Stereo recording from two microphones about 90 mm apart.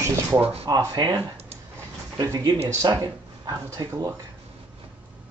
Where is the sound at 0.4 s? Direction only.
90° right.